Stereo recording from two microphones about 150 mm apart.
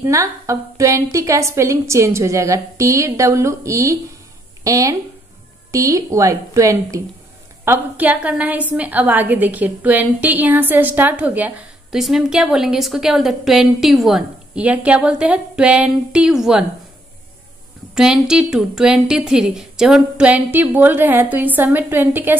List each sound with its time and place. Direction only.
0.0 s a woman's voice: 20° right (ahead or behind); by 16.6 s 5° right (ahead or behind)
17.9 s a woman's voice: 5° right (ahead or behind)